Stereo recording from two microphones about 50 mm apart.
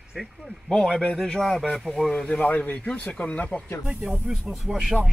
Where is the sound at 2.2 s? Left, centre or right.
Left.